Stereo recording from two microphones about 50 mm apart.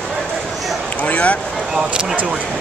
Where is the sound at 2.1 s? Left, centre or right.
Right.